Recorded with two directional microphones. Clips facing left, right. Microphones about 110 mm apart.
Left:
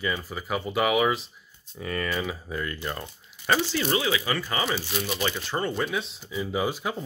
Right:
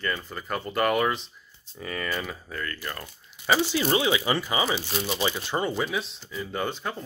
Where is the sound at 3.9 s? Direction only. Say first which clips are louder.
Right 2 dB; 25° right (ahead or behind).